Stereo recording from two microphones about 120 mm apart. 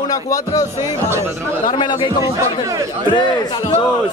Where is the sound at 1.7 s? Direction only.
40° left (ahead or behind).